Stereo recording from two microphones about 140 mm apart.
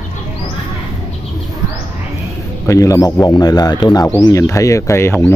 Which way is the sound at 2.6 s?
20° left (ahead or behind).